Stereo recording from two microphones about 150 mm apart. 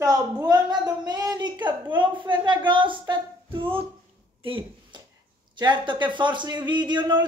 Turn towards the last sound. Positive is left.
turn(degrees=-30)  # may be behind; listen again after turning